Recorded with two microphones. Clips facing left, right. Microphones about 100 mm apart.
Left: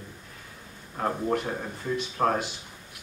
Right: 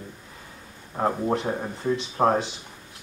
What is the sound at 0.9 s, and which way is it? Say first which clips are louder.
Speech: right 3 dB; 25° right (ahead or behind).